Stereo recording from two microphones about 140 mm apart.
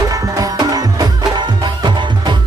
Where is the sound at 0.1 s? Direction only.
25° right (ahead or behind).